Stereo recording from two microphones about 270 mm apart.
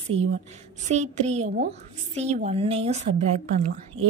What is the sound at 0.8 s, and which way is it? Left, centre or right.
A woman's voice, right.